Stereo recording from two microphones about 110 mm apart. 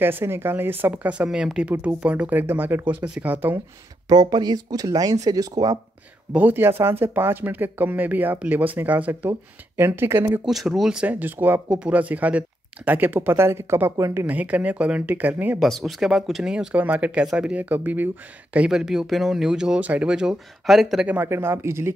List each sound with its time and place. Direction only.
0.0 s speech: 20° right (ahead or behind)
4.1 s speech: 35° right (ahead or behind)
6.3 s speech: 20° right (ahead or behind)
10.4 s speech: centre (ahead or behind); by 14.2 s 25° right (ahead or behind)
14.2 s speech: 15° right (ahead or behind)
15.6 s speech: centre (ahead or behind); by 21.9 s 25° right (ahead or behind)